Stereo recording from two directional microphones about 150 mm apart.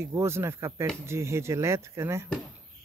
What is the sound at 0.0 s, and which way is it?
Speech, 15° right (ahead or behind).